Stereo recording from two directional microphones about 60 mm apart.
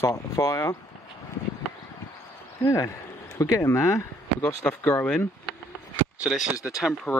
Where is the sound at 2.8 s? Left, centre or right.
Left.